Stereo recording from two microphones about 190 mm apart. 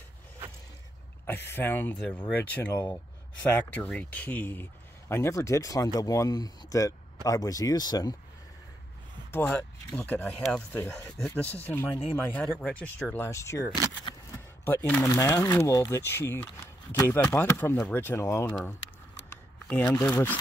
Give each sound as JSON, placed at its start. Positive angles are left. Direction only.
{"t": 1.2, "sound": "a man's voice", "side_deg": 10}
{"t": 9.3, "sound": "a man's voice", "side_deg": 10}
{"t": 19.7, "sound": "a man's voice", "side_deg": 10}